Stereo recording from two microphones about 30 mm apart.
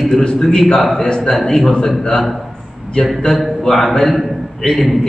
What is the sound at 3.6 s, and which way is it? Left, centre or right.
Speech, centre.